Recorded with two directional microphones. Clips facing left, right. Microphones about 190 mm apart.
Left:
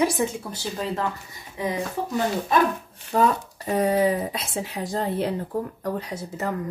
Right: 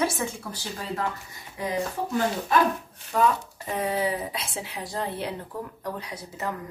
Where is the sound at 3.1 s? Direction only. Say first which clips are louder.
Left 2 dB; 40° left (ahead or behind).